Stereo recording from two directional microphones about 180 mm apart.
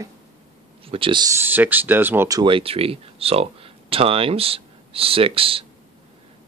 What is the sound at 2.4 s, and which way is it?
Speech, 30° right (ahead or behind).